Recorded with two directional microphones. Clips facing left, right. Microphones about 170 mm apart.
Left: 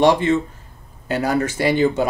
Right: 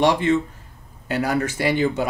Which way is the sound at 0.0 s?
25° left (ahead or behind).